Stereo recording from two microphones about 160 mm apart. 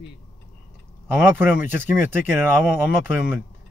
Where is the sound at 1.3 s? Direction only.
10° right (ahead or behind).